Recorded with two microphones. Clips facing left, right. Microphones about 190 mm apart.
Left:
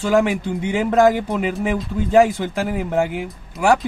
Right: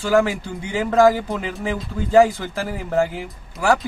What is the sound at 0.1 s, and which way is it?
Speech, 20° left (ahead or behind).